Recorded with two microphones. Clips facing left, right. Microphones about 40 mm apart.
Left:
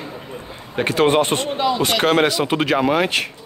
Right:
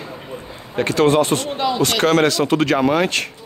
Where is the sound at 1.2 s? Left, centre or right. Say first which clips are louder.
Right 1 dB; left.